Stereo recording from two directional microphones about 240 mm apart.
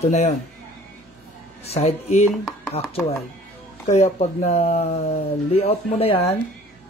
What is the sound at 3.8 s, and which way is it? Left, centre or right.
Speech, left.